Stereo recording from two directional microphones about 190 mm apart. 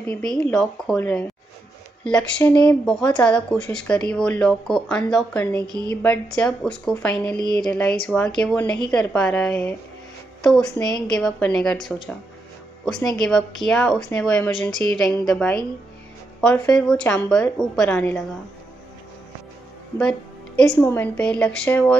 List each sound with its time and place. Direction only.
0.0 s speech: 5° left (ahead or behind)
5.6 s speech: 20° right (ahead or behind)
6.0 s speech: 5° left (ahead or behind)
12.8 s speech: 5° left (ahead or behind)
16.3 s a sound: 5° left (ahead or behind)
16.7 s speech: 5° left (ahead or behind)
20.0 s speech: 5° left (ahead or behind)